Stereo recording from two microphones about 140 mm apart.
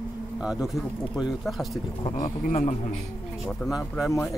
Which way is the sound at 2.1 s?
70° left (ahead or behind).